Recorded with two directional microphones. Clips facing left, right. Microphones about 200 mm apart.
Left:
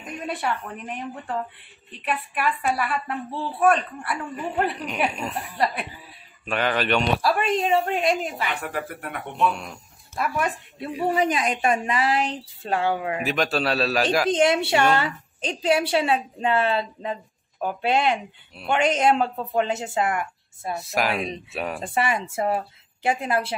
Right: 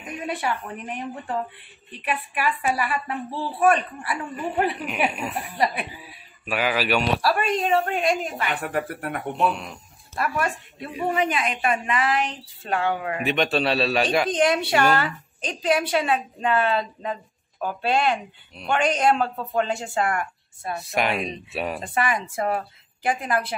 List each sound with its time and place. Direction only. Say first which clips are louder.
0.2 s a woman's voice: even; 5° right (ahead or behind)
2.0 s a woman's voice: even; 5° right (ahead or behind)
11.1 s speech: left 1 dB; 40° left (ahead or behind)
13.2 s a woman's voice: right 5 dB; centre (ahead or behind)
14.3 s a woman's voice: left 1 dB; 25° left (ahead or behind)
20.7 s a woman's voice: even; centre (ahead or behind)
21.8 s a woman's voice: left 2 dB; 25° left (ahead or behind)